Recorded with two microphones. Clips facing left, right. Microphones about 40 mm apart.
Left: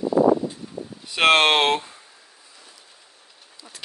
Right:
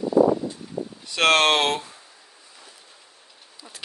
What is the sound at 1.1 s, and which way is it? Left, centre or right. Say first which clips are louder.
Speech: left 2 dB; centre.